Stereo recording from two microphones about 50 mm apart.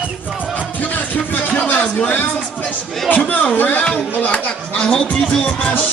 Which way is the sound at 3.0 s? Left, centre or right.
Left.